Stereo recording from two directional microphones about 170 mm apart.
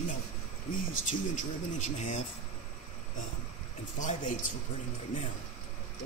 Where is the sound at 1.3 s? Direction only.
50° left (ahead or behind).